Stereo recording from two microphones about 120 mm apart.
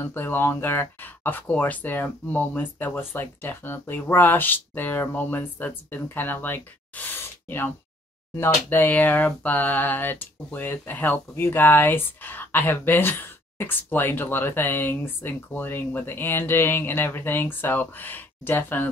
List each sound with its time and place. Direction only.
0.0 s speech: 15° left (ahead or behind)